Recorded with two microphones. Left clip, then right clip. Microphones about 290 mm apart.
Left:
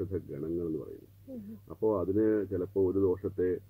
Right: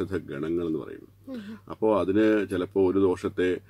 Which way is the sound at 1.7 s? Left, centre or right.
Right.